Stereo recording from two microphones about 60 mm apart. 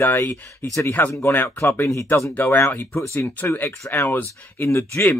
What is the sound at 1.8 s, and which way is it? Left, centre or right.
Speech, left.